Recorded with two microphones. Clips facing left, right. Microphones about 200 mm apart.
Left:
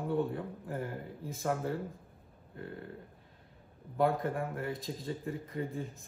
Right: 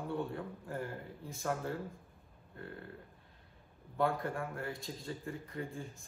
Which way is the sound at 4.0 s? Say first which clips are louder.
Left 4 dB; 20° left (ahead or behind).